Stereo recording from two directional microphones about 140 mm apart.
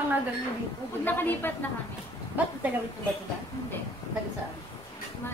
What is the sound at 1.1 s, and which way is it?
Speech, 15° left (ahead or behind).